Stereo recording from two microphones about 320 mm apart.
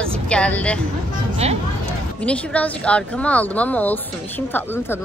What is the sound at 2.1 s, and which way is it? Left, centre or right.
A woman's voice, centre.